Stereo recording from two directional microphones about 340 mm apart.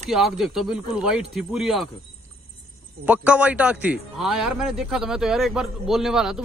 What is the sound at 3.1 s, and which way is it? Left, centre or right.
A man's voice, centre.